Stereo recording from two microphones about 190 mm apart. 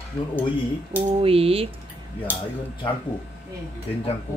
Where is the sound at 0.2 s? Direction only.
15° left (ahead or behind).